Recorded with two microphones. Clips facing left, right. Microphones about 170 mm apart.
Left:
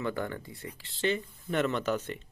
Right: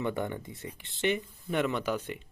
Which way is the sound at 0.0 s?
20° right (ahead or behind).